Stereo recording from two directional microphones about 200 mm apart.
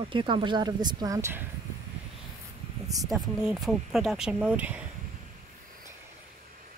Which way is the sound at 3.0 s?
Centre (ahead or behind).